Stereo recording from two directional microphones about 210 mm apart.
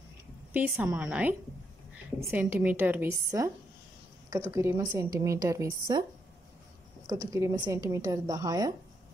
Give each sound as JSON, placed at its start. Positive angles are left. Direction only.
{"t": 0.5, "sound": "a woman's voice", "side_deg": -10}
{"t": 2.3, "sound": "a woman's voice", "side_deg": -10}
{"t": 7.1, "sound": "a woman's voice", "side_deg": -15}